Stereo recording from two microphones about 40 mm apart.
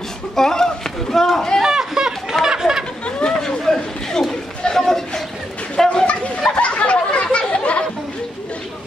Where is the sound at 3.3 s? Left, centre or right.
Centre.